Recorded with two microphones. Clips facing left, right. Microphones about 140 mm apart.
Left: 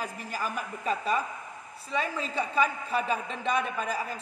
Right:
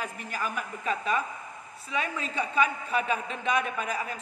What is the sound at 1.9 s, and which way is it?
A man's voice, centre (ahead or behind).